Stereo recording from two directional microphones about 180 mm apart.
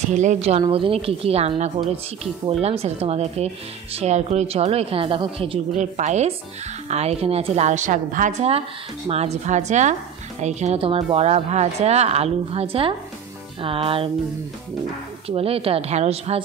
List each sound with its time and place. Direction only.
0.1 s a woman's voice: 40° right (ahead or behind)
5.7 s a woman's voice: 40° right (ahead or behind)
15.2 s a woman's voice: 35° right (ahead or behind)